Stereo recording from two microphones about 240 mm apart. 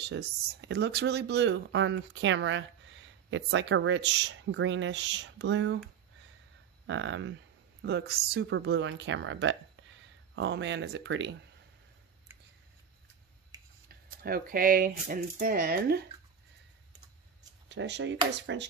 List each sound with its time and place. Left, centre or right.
0.1 s speech: right
6.9 s speech: right
13.8 s speech: right
17.6 s speech: right